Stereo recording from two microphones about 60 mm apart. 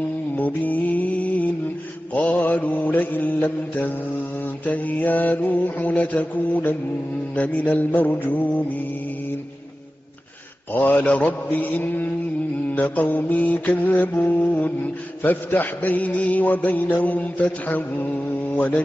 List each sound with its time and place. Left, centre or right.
0.4 s music: left
2.1 s mantra: left
10.7 s mantra: left